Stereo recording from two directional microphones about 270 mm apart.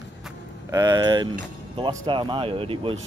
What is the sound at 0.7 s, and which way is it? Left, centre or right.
Speech, centre.